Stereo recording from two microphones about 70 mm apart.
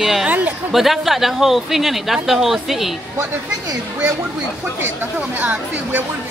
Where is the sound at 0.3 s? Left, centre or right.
Right.